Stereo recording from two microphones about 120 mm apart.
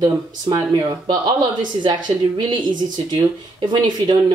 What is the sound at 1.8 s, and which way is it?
Speech, 40° right (ahead or behind).